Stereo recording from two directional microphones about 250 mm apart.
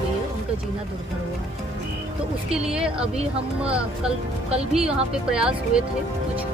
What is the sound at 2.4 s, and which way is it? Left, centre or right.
Speech, centre.